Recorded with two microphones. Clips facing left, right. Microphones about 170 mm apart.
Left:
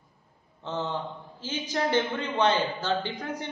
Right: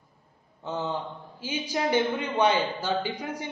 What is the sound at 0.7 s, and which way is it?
A man's voice, 10° right (ahead or behind).